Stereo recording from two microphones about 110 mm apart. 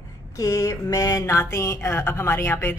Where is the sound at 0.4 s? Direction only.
30° left (ahead or behind).